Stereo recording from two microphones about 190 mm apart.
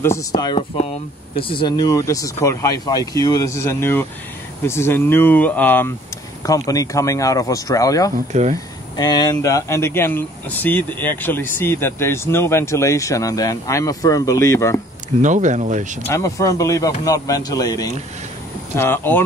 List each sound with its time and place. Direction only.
0.0 s speech: 15° left (ahead or behind)
0.6 s speech: 30° left (ahead or behind)
8.3 s speech: 40° right (ahead or behind)
8.9 s speech: 20° left (ahead or behind)
15.1 s speech: 40° right (ahead or behind)
16.1 s speech: 15° left (ahead or behind)